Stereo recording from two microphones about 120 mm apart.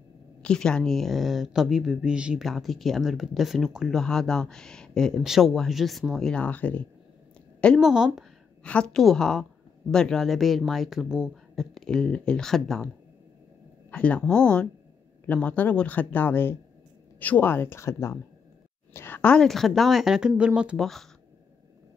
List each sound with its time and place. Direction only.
0.4 s speech: 5° left (ahead or behind)
7.8 s speech: 5° right (ahead or behind)
8.6 s speech: 10° left (ahead or behind)
13.8 s speech: 10° left (ahead or behind); by 20.8 s 10° right (ahead or behind)
20.8 s speech: centre (ahead or behind)